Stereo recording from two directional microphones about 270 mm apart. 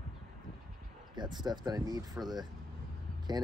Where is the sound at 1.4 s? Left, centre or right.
Centre.